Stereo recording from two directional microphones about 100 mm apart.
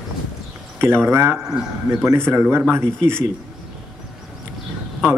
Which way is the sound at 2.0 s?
25° right (ahead or behind).